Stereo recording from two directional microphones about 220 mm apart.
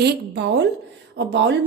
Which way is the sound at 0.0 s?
50° right (ahead or behind).